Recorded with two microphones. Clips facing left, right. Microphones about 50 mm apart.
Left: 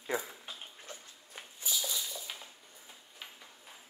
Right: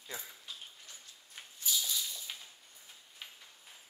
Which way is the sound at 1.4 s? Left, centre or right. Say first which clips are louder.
Even; centre.